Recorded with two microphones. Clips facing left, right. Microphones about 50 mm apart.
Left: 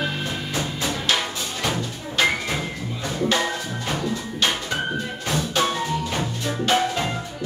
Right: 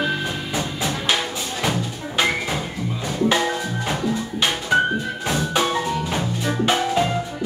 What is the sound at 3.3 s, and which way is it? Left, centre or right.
Music, centre.